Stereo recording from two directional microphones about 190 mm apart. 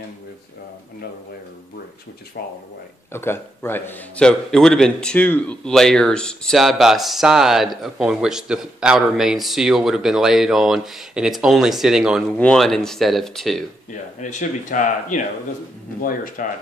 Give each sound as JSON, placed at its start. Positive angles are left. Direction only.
{"t": 3.1, "sound": "a man's voice", "side_deg": 10}
{"t": 14.2, "sound": "speech", "side_deg": 40}
{"t": 16.4, "sound": "speech", "side_deg": 45}